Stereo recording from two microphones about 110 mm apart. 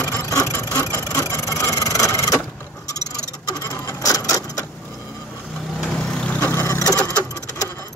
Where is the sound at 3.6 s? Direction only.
30° left (ahead or behind).